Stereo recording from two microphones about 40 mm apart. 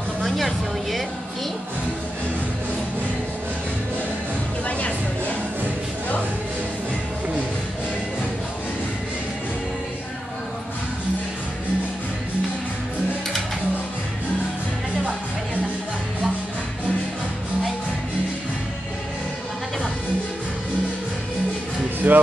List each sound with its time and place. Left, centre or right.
0.2 s music: centre
4.6 s music: left
22.0 s music: right